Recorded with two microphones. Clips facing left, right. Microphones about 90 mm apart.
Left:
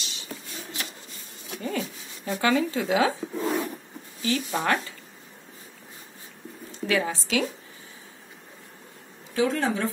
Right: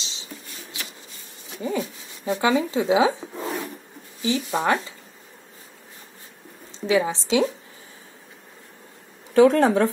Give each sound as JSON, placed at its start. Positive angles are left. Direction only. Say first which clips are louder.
{"t": 0.0, "sound": "a sound", "louder": "even", "side_deg": -20}
{"t": 1.6, "sound": "speech", "louder": "right 4 dB", "side_deg": -15}
{"t": 6.7, "sound": "a woman's voice", "louder": "right 4 dB", "side_deg": -20}
{"t": 9.3, "sound": "speech", "louder": "right 9 dB", "side_deg": -55}